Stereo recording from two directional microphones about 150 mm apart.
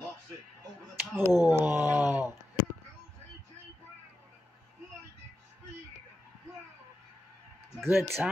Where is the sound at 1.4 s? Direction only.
15° right (ahead or behind).